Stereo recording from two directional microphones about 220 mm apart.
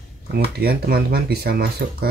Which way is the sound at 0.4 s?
45° right (ahead or behind).